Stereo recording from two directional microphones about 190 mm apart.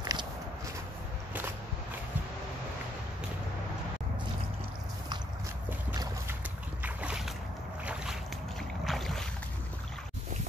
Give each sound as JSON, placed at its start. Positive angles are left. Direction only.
{"t": 0.0, "sound": "walk", "side_deg": -20}
{"t": 6.8, "sound": "boat", "side_deg": -5}